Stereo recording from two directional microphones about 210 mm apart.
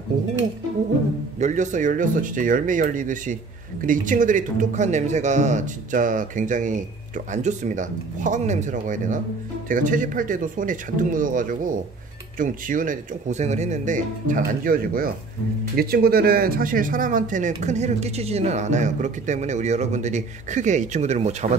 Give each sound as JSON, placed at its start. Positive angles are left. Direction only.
{"t": 1.4, "sound": "speech", "side_deg": -35}